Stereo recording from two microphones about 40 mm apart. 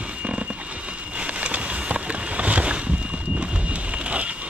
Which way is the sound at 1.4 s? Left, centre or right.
Right.